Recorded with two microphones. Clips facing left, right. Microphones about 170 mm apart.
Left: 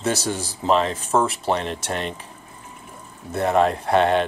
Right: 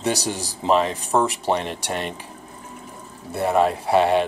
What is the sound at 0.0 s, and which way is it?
Speech, 15° right (ahead or behind).